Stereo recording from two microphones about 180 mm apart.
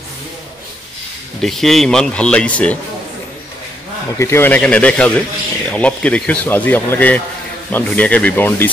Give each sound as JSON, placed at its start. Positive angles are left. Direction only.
{"t": 1.4, "sound": "speech", "side_deg": 0}
{"t": 4.2, "sound": "speech", "side_deg": 15}